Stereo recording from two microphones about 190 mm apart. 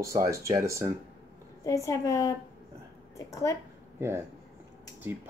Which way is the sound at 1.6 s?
15° left (ahead or behind).